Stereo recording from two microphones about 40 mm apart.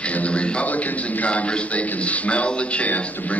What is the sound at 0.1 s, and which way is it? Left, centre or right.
A man's voice, left.